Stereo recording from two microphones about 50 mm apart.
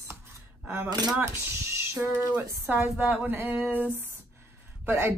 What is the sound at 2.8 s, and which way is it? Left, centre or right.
Speech, right.